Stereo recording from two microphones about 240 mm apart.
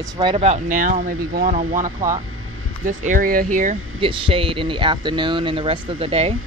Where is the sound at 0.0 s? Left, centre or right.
Centre; by 3.4 s right.